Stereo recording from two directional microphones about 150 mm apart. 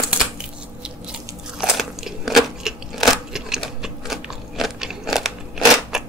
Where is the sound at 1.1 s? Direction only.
5° right (ahead or behind).